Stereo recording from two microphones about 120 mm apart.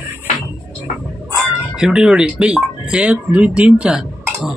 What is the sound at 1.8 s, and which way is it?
Speech, 5° right (ahead or behind).